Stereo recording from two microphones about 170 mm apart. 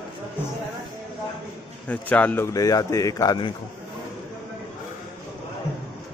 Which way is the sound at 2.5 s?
20° left (ahead or behind).